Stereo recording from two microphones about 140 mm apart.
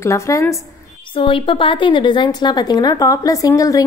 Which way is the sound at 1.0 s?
40° left (ahead or behind).